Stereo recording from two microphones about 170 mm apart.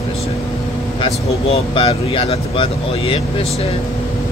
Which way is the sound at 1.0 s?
30° left (ahead or behind).